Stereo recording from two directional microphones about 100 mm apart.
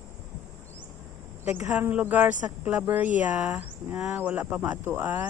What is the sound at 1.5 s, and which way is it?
Speech, 20° right (ahead or behind).